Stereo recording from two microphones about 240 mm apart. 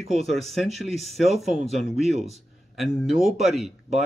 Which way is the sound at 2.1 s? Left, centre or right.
Centre.